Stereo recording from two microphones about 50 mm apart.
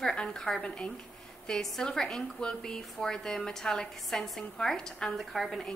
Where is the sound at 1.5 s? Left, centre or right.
Centre.